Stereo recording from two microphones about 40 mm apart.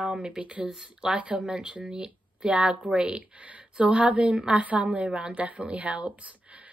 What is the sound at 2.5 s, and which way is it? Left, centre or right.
A woman's voice, right.